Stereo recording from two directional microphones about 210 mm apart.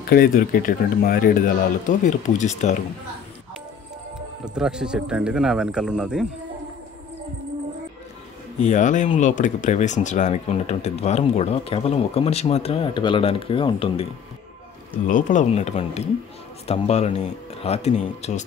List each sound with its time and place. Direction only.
0.1 s speech: 45° left (ahead or behind)
4.6 s speech: 5° right (ahead or behind)
8.6 s speech: 35° left (ahead or behind)
15.0 s speech: 40° left (ahead or behind)